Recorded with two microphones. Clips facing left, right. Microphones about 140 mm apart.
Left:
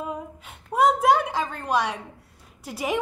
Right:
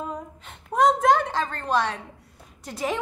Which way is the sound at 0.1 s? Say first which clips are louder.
Left 1 dB; 10° left (ahead or behind).